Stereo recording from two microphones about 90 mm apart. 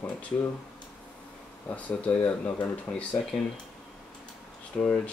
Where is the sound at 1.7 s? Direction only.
15° left (ahead or behind).